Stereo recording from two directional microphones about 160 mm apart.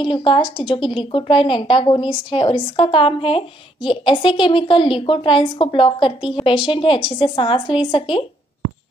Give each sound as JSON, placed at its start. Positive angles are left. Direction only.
{"t": 0.0, "sound": "a woman's voice", "side_deg": 30}